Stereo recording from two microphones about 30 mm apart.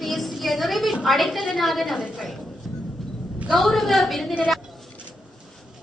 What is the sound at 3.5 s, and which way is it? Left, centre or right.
Speech, centre.